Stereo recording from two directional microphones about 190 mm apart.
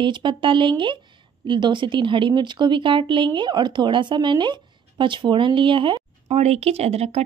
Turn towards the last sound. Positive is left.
turn(degrees=-35)  # may be behind; listen again after turning